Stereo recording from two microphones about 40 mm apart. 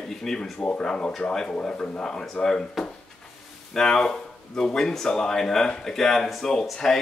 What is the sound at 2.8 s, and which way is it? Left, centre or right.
Speech, centre.